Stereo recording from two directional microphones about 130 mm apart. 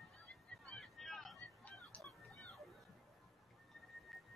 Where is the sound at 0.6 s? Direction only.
Centre (ahead or behind).